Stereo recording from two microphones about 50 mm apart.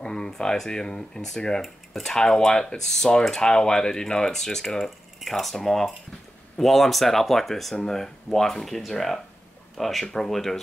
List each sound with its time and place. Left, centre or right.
0.0 s speech: centre